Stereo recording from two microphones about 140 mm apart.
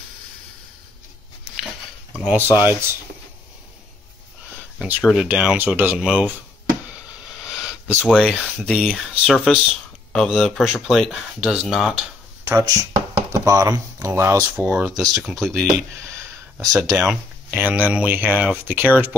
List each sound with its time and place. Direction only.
2.1 s speech: 10° right (ahead or behind)
4.8 s speech: 10° right (ahead or behind)
6.9 s a sound: 5° right (ahead or behind)
8.1 s speech: centre (ahead or behind)
12.4 s speech: 20° right (ahead or behind)
15.0 s speech: centre (ahead or behind)
15.5 s a sound: 15° right (ahead or behind)
16.9 s speech: 5° right (ahead or behind)